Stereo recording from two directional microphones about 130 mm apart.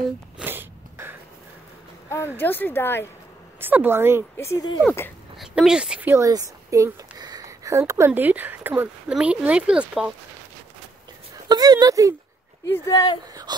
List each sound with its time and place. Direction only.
0.4 s sneeze: 15° right (ahead or behind)
2.0 s a woman's voice: 20° left (ahead or behind)
3.6 s speech: 15° right (ahead or behind)
4.4 s speech: 20° left (ahead or behind)
5.4 s speech: 5° right (ahead or behind)
6.1 s speech: 25° right (ahead or behind); by 10.1 s 5° right (ahead or behind)
11.4 s speech: 30° right (ahead or behind)
12.6 s speech: 20° left (ahead or behind)
13.3 s speech: 30° right (ahead or behind)